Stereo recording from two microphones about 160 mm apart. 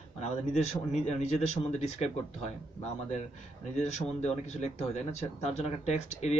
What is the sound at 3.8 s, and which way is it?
Speech, 45° left (ahead or behind).